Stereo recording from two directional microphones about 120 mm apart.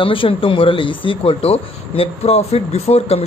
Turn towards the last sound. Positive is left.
turn(degrees=60)  # may be behind; listen again after turning